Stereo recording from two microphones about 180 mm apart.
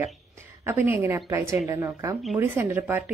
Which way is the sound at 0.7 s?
15° right (ahead or behind).